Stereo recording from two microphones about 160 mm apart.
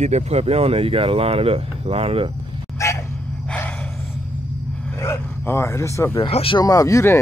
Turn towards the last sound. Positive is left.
turn(degrees=20)  # may be behind; listen again after turning